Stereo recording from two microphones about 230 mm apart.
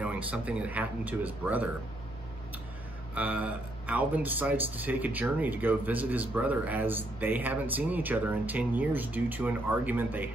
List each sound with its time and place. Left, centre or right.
0.0 s speech: centre
3.2 s speech: centre